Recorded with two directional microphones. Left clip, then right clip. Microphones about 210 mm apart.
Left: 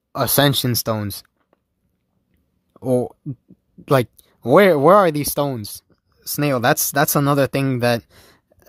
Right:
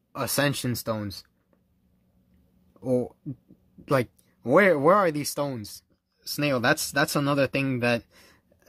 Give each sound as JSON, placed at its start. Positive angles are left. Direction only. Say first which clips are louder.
{"t": 0.1, "sound": "speech", "louder": "left 9 dB", "side_deg": 40}
{"t": 2.7, "sound": "a sound", "louder": "left 7 dB", "side_deg": 40}
{"t": 3.8, "sound": "speech", "louder": "left 7 dB", "side_deg": 40}